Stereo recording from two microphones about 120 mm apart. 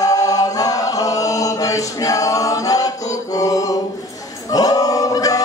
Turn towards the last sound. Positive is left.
turn(degrees=30)  # may be behind; listen again after turning